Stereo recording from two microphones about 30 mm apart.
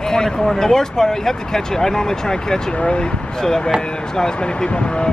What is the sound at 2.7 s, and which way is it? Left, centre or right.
Speech, left.